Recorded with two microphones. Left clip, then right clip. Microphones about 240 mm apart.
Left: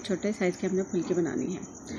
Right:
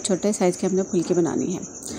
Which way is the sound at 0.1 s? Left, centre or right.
Centre.